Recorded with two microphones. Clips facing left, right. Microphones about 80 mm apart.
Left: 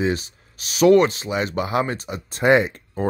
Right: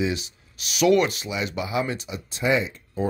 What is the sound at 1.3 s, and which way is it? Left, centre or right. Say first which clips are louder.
Speech: left 4 dB; left.